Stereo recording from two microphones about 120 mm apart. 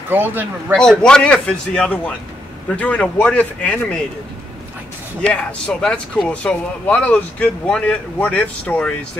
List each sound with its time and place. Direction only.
0.1 s a man's voice: 15° right (ahead or behind)
0.7 s speech: 5° left (ahead or behind)
5.2 s speech: 10° left (ahead or behind)